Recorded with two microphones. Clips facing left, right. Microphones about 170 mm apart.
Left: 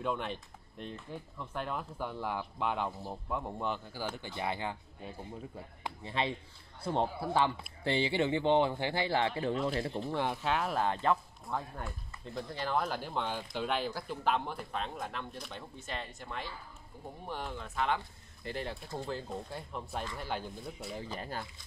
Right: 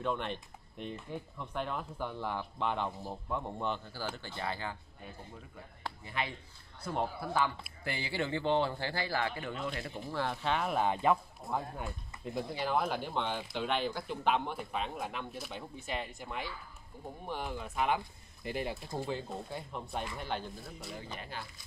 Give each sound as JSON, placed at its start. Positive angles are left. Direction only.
{"t": 0.0, "sound": "speech", "side_deg": 5}
{"t": 6.0, "sound": "a man's voice", "side_deg": 30}
{"t": 10.2, "sound": "speech", "side_deg": 10}
{"t": 19.0, "sound": "speech", "side_deg": 0}
{"t": 21.1, "sound": "speech", "side_deg": 40}